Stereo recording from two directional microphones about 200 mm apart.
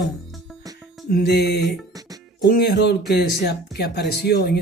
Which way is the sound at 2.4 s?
50° left (ahead or behind).